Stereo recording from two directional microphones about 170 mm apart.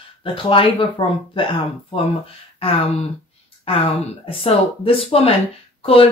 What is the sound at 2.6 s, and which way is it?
Speech, 35° left (ahead or behind).